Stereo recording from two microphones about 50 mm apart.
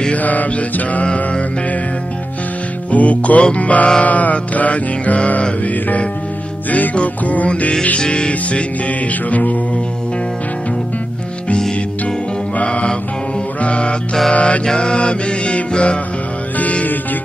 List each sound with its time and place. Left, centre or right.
0.1 s mantra: left
1.0 s music: left
2.9 s music: left
12.5 s music: left
14.7 s mantra: centre
16.5 s music: left